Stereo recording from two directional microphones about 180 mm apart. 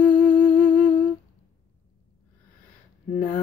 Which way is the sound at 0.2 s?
10° left (ahead or behind).